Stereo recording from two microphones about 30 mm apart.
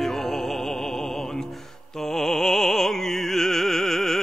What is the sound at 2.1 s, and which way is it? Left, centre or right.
Music, centre.